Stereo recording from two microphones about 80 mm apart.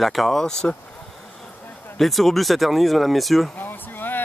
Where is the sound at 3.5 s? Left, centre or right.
Left.